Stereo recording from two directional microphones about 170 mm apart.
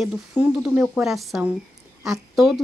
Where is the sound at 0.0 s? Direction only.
Centre (ahead or behind).